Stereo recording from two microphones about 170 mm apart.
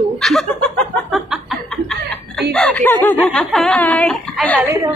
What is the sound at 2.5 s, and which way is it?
Speech, 5° left (ahead or behind).